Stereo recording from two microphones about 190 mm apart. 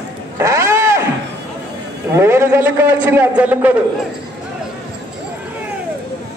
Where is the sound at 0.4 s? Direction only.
15° right (ahead or behind).